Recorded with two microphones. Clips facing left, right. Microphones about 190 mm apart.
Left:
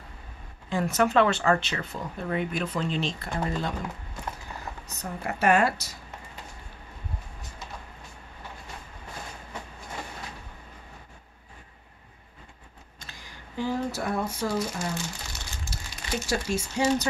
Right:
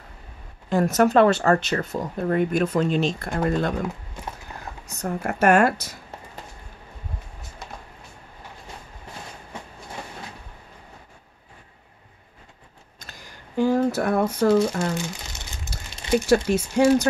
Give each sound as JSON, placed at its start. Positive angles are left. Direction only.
{"t": 0.7, "sound": "speech", "side_deg": -40}
{"t": 4.8, "sound": "speech", "side_deg": -45}
{"t": 13.6, "sound": "speech", "side_deg": -50}
{"t": 16.3, "sound": "speech", "side_deg": -60}